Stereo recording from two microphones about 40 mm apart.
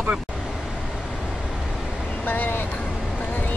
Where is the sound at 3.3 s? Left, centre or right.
Left.